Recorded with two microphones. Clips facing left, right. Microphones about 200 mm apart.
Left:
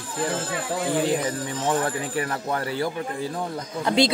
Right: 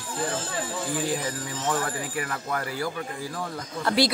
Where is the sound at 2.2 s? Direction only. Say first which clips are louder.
Left 4 dB; 30° left (ahead or behind).